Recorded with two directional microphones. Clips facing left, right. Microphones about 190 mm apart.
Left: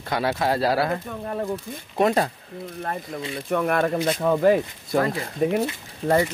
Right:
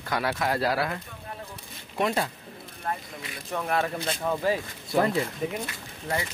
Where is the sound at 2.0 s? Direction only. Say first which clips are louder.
Left 6 dB; 45° left (ahead or behind).